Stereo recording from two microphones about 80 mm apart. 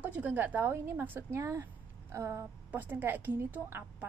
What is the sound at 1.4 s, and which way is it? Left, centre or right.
A woman's voice, right.